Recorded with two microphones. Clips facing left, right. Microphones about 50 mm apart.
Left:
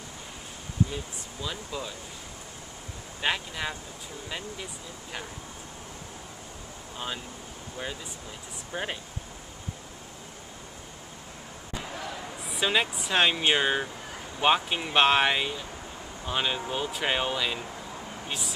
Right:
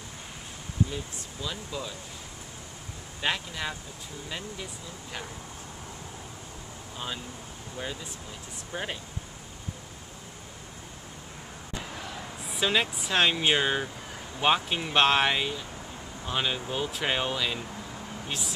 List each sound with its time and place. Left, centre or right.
0.8 s speech: centre
3.2 s speech: centre
7.7 s speech: centre
12.4 s speech: centre